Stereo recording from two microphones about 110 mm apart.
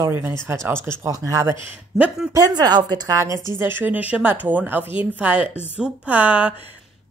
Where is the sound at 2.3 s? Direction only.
35° right (ahead or behind).